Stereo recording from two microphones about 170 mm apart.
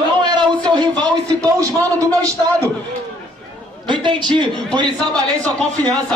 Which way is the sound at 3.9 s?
25° right (ahead or behind).